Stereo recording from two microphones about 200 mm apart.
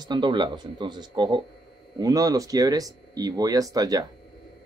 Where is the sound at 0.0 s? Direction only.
20° right (ahead or behind).